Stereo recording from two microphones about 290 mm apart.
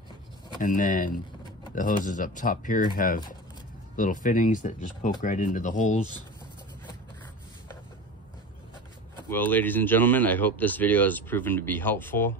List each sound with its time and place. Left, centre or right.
0.6 s speech: left
9.3 s speech: centre